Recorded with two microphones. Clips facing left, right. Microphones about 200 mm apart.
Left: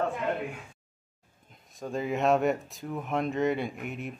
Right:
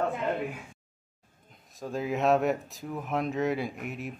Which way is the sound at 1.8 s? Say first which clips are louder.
Even; centre (ahead or behind).